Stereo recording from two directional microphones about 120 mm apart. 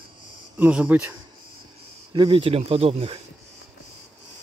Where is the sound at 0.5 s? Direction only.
10° right (ahead or behind).